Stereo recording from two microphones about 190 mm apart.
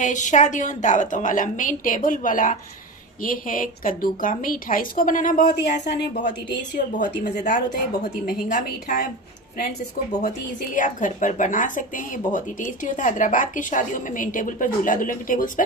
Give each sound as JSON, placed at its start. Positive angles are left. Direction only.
{"t": 0.0, "sound": "a woman's voice", "side_deg": 40}
{"t": 7.2, "sound": "a woman's voice", "side_deg": 60}
{"t": 8.0, "sound": "a woman's voice", "side_deg": 45}
{"t": 10.2, "sound": "a woman's voice", "side_deg": 40}